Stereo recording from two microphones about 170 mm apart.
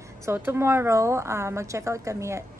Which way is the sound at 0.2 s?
15° right (ahead or behind).